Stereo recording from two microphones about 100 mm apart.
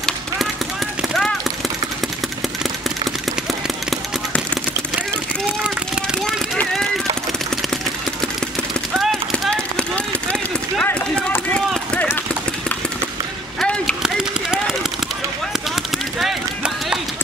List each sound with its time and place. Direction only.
1.0 s clip-clop: centre (ahead or behind)
6.1 s vehicle: centre (ahead or behind)
8.9 s clip-clop: centre (ahead or behind)
9.8 s run: 10° left (ahead or behind)
10.9 s run: 20° left (ahead or behind)
13.6 s a sound: 10° left (ahead or behind)
14.0 s a sound: 5° right (ahead or behind)
15.7 s run: centre (ahead or behind)